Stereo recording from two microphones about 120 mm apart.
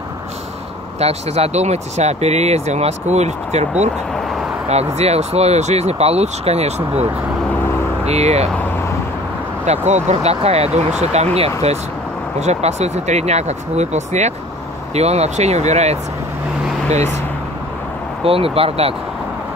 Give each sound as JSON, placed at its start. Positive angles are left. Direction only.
{"t": 0.9, "sound": "speech", "side_deg": -60}
{"t": 8.0, "sound": "speech", "side_deg": -65}
{"t": 9.7, "sound": "speech", "side_deg": -70}
{"t": 18.2, "sound": "speech", "side_deg": -50}